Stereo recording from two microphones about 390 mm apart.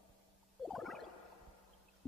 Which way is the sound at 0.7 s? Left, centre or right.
Centre.